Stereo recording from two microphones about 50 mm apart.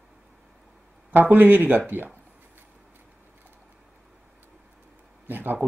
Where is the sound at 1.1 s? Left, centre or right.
Right.